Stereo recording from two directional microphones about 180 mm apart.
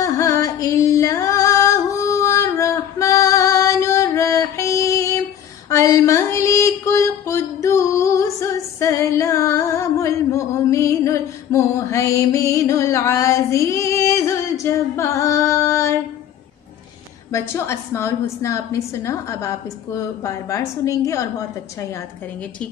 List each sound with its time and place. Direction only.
0.0 s music: 20° left (ahead or behind)
5.7 s a sound: 15° left (ahead or behind)
17.3 s a woman's voice: 15° left (ahead or behind)